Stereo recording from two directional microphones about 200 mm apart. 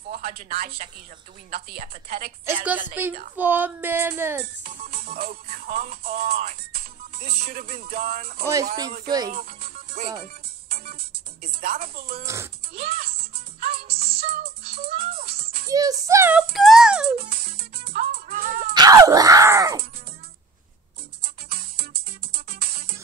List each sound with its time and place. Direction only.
0.1 s speech: 45° right (ahead or behind)
3.0 s screaming: 10° right (ahead or behind)
4.6 s speech: 45° right (ahead or behind)
9.3 s music: 45° right (ahead or behind)
15.7 s screaming: 15° right (ahead or behind)
16.5 s music: centre (ahead or behind)
17.2 s music: 50° right (ahead or behind)
18.7 s screaming: 15° right (ahead or behind)
21.2 s music: 50° right (ahead or behind)